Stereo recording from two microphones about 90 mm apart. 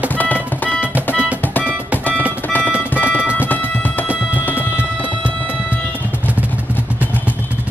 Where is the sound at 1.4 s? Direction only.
20° left (ahead or behind).